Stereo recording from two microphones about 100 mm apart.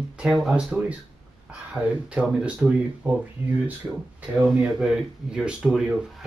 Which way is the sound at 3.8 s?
Centre (ahead or behind).